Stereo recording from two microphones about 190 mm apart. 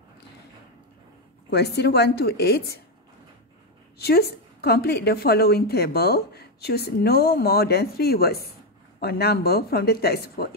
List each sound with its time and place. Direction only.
1.5 s a woman's voice: 60° left (ahead or behind)
4.0 s a woman's voice: 55° left (ahead or behind)